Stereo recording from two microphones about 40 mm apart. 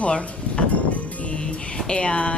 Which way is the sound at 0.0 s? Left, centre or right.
Left.